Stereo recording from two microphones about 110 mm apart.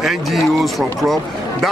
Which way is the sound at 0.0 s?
Centre (ahead or behind).